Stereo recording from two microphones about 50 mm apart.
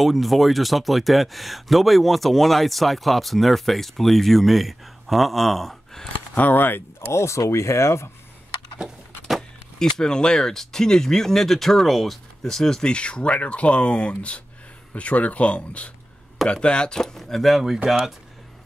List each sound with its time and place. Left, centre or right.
0.0 s speech: centre
6.3 s speech: left
7.1 s speech: left
9.8 s speech: centre
12.9 s speech: left; by 17.6 s centre
17.8 s speech: centre